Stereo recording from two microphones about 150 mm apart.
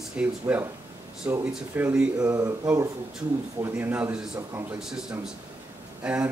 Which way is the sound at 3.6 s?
10° right (ahead or behind).